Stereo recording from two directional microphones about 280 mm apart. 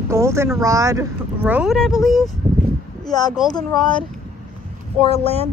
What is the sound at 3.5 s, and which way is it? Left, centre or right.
Speech, centre.